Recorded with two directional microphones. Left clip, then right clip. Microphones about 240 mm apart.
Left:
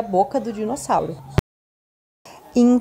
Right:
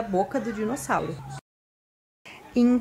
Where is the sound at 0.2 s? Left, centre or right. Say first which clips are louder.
Left 6 dB; centre.